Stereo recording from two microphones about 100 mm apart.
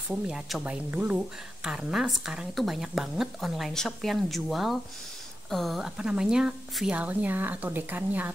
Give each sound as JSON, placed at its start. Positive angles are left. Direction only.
{"t": 0.1, "sound": "a woman's voice", "side_deg": -5}